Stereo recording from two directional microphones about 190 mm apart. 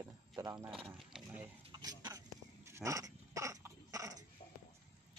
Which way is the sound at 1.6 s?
20° right (ahead or behind).